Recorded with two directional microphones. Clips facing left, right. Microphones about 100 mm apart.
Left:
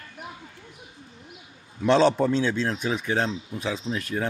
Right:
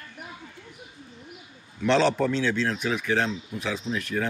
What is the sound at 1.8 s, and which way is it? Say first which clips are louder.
Speech: left 2 dB; 20° left (ahead or behind).